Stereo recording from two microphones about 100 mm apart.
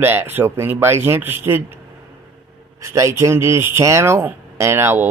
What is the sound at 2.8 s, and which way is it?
Speech, 30° right (ahead or behind).